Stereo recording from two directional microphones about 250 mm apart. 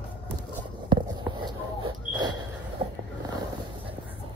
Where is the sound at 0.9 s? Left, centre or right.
Centre.